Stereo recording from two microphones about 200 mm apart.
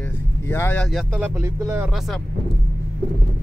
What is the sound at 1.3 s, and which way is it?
Speech, 10° right (ahead or behind).